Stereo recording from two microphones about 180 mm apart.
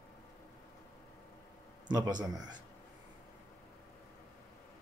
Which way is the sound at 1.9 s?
25° right (ahead or behind).